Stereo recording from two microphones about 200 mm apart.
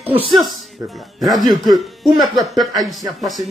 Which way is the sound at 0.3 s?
Centre (ahead or behind).